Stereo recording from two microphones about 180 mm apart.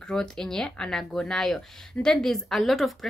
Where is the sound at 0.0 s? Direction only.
5° left (ahead or behind).